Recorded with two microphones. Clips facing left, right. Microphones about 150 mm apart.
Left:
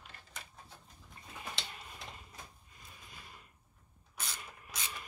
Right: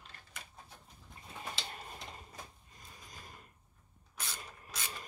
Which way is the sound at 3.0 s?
40° right (ahead or behind).